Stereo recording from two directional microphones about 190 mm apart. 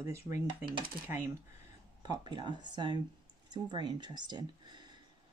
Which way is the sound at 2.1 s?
25° right (ahead or behind).